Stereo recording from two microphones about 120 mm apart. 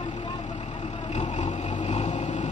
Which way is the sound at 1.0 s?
65° left (ahead or behind).